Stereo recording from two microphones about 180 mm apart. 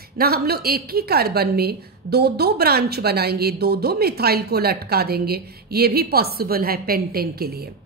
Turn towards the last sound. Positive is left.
turn(degrees=-60)  # may be behind; listen again after turning